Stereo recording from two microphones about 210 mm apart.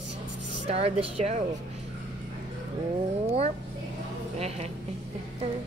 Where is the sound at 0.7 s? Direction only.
30° right (ahead or behind).